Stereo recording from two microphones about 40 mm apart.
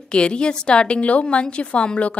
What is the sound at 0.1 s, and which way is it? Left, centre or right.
A woman's voice, left.